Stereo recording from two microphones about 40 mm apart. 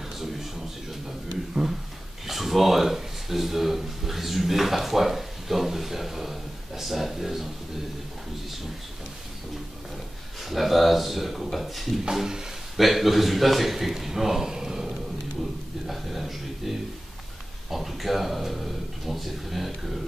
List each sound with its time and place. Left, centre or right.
1.0 s speech: centre
10.4 s a man's voice: centre
12.0 s speech: centre
12.7 s a man's voice: centre
15.9 s a man's voice: centre